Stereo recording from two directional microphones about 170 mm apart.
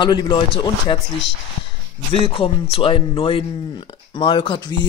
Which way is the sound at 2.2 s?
35° left (ahead or behind).